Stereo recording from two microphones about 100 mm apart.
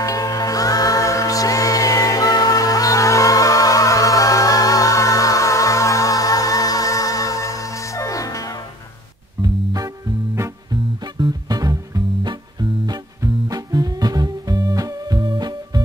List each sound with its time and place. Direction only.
0.0 s music: 35° left (ahead or behind)
9.4 s music: 35° right (ahead or behind)